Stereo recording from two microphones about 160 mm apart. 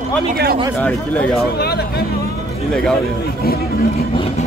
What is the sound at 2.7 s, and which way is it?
Speech, 5° left (ahead or behind).